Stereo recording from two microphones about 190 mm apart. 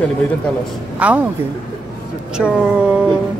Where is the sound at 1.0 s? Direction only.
5° right (ahead or behind).